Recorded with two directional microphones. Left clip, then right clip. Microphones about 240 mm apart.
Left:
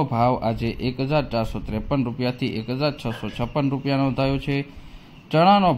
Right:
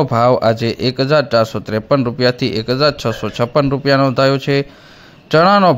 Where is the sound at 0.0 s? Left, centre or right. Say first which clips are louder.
Right 9 dB; right.